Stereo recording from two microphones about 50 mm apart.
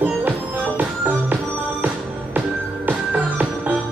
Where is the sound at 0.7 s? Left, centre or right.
Right.